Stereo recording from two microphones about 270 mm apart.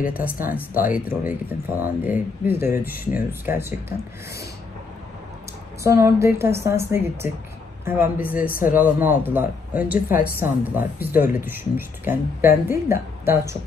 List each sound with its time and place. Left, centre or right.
0.1 s speech: centre
5.9 s speech: centre
8.4 s speech: left
8.7 s speech: centre